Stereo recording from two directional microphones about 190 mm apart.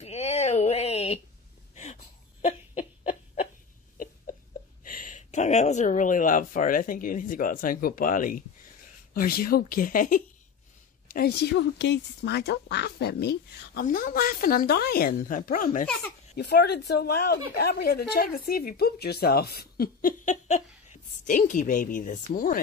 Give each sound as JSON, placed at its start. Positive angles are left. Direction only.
{"t": 0.0, "sound": "a sound", "side_deg": 35}
{"t": 4.8, "sound": "speech", "side_deg": 45}
{"t": 16.3, "sound": "speech", "side_deg": 60}